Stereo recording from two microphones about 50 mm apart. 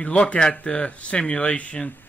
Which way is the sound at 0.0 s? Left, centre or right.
Left.